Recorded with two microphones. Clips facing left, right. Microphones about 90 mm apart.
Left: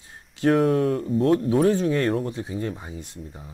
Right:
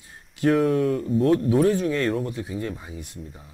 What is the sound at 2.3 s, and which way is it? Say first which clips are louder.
Speech: left 1 dB; 25° left (ahead or behind).